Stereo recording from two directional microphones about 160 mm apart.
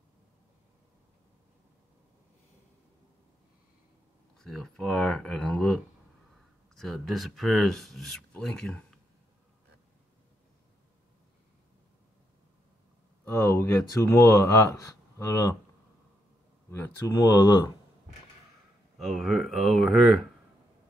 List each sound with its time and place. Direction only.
4.4 s speech: 5° left (ahead or behind)
13.2 s speech: 15° left (ahead or behind)
16.7 s speech: 15° left (ahead or behind)
18.9 s speech: centre (ahead or behind)